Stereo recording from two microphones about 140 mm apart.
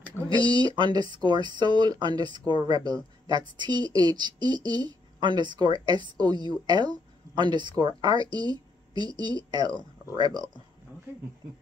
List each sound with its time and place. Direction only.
0.4 s speech: 35° left (ahead or behind)
0.7 s speech: 30° right (ahead or behind)
2.5 s speech: 35° left (ahead or behind)
2.8 s speech: 30° right (ahead or behind)